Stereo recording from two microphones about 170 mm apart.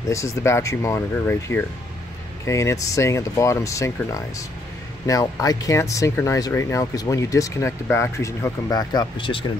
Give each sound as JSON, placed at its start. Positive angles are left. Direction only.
{"t": 0.1, "sound": "speech", "side_deg": 15}